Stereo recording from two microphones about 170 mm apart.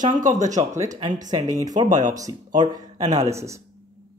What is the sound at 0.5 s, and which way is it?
Speech, 20° right (ahead or behind).